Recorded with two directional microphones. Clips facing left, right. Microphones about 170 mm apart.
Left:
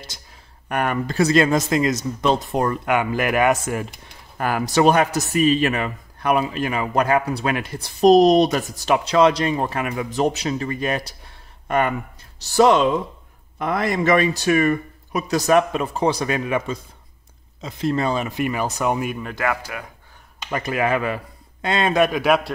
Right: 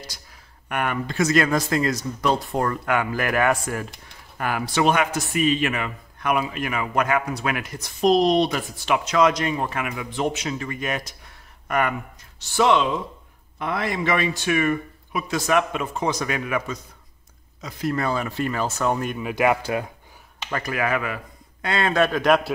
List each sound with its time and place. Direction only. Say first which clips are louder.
0.7 s speech: left 3 dB; 40° left (ahead or behind); by 3.8 s 20° left (ahead or behind)
4.4 s a man's voice: left 4 dB; 40° left (ahead or behind)
12.4 s a man's voice: left 4 dB; 40° left (ahead or behind); by 19.1 s 10° left (ahead or behind)
19.1 s speech: right 3 dB; 10° right (ahead or behind)
19.4 s speech: right 5 dB; 25° right (ahead or behind)
20.4 s speech: left 3 dB; 20° left (ahead or behind)